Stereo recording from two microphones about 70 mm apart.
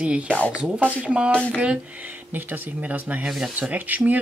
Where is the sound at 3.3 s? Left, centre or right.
Centre.